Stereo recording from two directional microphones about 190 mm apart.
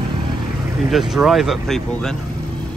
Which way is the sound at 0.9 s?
Centre (ahead or behind).